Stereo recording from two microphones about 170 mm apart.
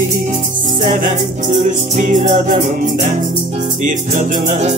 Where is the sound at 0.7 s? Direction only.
50° right (ahead or behind).